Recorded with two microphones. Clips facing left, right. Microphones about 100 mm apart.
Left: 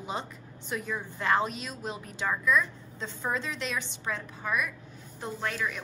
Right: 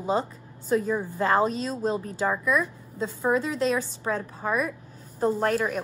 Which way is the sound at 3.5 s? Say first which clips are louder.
Right 9 dB; 35° right (ahead or behind).